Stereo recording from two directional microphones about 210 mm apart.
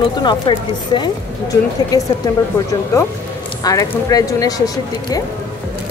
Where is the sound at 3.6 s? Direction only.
15° left (ahead or behind).